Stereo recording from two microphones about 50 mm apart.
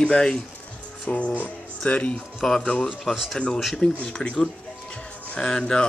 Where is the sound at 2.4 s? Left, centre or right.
Centre.